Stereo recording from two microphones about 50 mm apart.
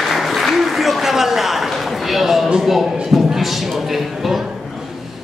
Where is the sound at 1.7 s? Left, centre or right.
Centre.